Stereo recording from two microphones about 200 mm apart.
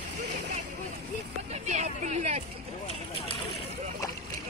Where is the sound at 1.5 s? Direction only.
35° right (ahead or behind).